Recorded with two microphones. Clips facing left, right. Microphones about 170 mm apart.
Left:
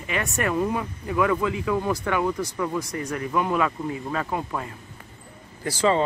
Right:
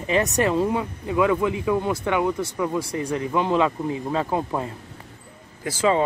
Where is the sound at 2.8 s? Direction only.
30° right (ahead or behind).